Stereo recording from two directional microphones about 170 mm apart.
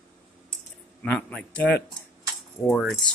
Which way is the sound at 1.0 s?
10° left (ahead or behind).